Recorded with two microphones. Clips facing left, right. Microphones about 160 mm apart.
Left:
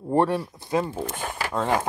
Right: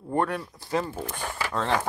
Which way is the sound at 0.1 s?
30° left (ahead or behind).